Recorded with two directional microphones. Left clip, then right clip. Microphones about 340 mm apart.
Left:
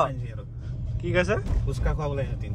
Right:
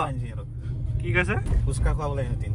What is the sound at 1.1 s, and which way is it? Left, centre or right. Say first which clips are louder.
Speech: left 1 dB; centre.